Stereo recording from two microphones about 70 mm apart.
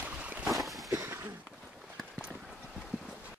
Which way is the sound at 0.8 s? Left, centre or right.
Right.